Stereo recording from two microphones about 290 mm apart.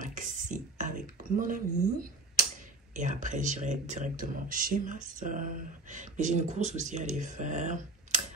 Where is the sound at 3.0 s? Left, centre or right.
Right.